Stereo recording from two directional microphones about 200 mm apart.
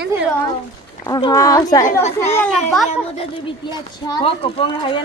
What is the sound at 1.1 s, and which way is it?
Speech, 20° left (ahead or behind).